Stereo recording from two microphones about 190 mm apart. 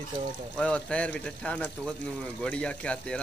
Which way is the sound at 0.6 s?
5° left (ahead or behind).